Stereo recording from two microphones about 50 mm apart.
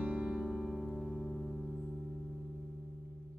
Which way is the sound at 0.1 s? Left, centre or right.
Centre.